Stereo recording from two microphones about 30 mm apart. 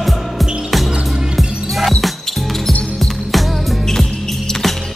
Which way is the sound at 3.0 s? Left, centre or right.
Centre.